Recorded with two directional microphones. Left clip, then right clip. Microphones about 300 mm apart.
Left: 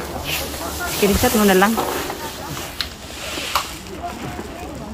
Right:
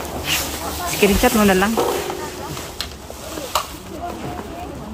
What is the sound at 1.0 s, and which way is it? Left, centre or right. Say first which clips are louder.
Speech: right 2 dB; centre.